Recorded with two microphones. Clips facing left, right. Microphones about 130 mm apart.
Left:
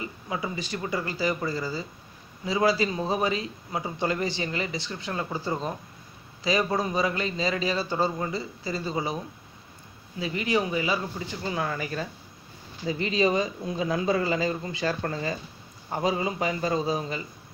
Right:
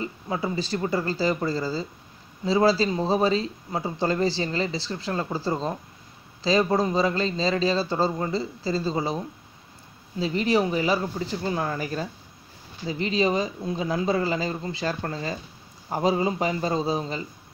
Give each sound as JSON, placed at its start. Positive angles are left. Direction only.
{"t": 0.0, "sound": "a man's voice", "side_deg": -35}